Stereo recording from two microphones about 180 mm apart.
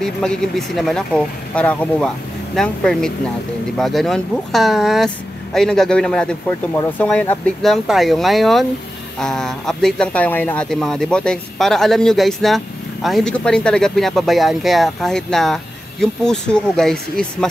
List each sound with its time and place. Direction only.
0.0 s speech: 5° left (ahead or behind)